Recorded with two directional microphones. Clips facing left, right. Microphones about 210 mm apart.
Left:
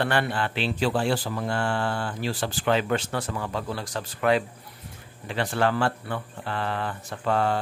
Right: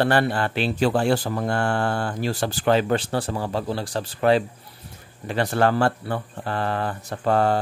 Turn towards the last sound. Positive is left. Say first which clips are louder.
# right 4 dB
turn(degrees=-40)  # may be behind; listen again after turning